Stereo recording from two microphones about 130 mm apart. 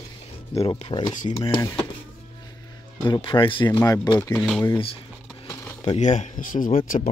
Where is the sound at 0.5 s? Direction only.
45° left (ahead or behind).